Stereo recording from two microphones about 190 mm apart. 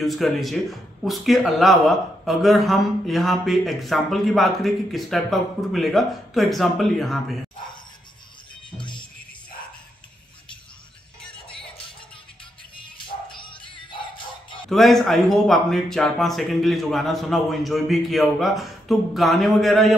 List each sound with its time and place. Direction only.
0.0 s speech: centre (ahead or behind)
8.7 s music: 25° left (ahead or behind)
13.4 s music: 25° left (ahead or behind)
14.7 s speech: centre (ahead or behind)